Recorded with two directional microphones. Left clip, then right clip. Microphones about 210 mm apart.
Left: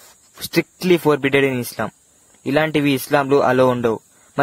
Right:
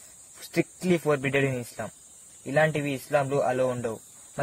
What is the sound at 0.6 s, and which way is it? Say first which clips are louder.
A man's voice: left 9 dB; 35° left (ahead or behind).